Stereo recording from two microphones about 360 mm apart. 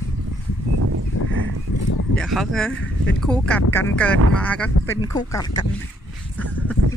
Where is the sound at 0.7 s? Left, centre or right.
Right.